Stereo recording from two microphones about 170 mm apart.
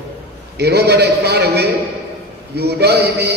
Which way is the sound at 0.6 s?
75° right (ahead or behind).